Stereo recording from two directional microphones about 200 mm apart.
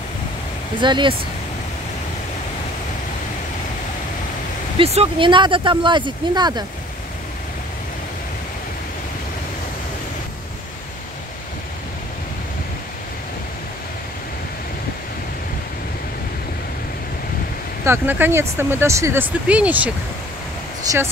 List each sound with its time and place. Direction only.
0.7 s speech: 25° right (ahead or behind)
4.7 s speech: 30° right (ahead or behind)
17.8 s speech: 10° right (ahead or behind)